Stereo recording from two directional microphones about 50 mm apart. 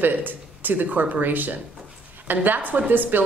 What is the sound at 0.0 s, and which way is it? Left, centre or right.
A woman's voice, right.